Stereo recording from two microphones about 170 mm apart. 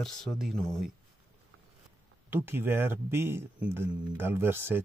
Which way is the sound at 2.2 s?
10° right (ahead or behind).